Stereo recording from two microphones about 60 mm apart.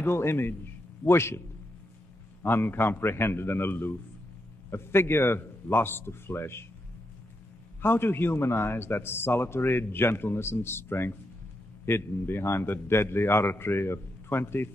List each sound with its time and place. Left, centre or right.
0.0 s a man's voice: left
2.4 s a man's voice: left
7.8 s a man's voice: left